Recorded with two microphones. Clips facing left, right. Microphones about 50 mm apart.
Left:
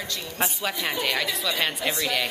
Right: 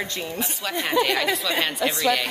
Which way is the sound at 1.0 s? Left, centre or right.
Centre.